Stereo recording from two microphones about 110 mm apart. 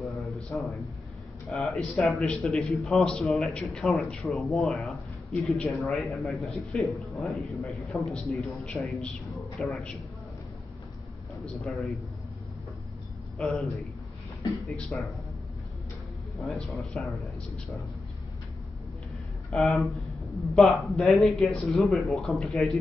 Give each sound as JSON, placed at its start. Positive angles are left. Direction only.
{"t": 0.5, "sound": "a man's voice", "side_deg": 15}
{"t": 1.5, "sound": "speech", "side_deg": 0}
{"t": 11.4, "sound": "speech", "side_deg": 0}
{"t": 13.4, "sound": "speech", "side_deg": 0}
{"t": 16.3, "sound": "speech", "side_deg": 0}
{"t": 19.5, "sound": "speech", "side_deg": 0}